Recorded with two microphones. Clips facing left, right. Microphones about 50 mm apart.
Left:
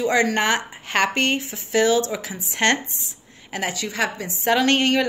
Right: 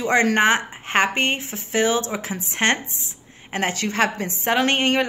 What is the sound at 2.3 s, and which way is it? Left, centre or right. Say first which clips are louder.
Speech: right 3 dB; right.